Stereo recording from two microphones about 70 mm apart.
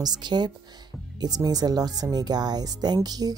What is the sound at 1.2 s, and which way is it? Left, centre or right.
Speech, right.